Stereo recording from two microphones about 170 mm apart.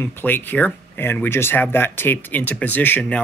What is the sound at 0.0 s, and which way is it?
Speech, 10° left (ahead or behind).